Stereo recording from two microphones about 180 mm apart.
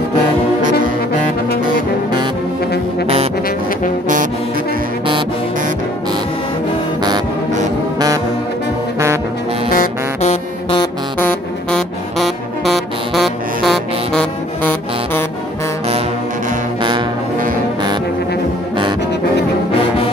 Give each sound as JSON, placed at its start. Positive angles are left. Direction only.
{"t": 9.7, "sound": "music", "side_deg": 45}
{"t": 11.1, "sound": "music", "side_deg": 5}
{"t": 14.6, "sound": "music", "side_deg": 10}